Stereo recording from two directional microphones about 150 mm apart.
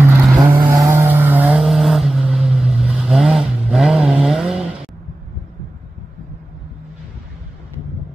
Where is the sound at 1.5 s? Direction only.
Centre (ahead or behind).